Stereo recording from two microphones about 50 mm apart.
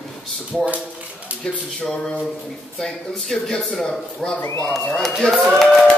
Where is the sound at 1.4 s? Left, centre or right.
Centre.